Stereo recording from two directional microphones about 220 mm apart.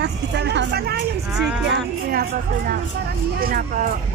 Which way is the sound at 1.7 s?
45° right (ahead or behind).